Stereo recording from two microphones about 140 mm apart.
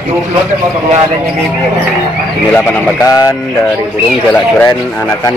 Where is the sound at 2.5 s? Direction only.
10° left (ahead or behind).